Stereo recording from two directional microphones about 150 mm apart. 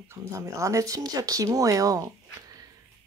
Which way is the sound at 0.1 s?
20° right (ahead or behind).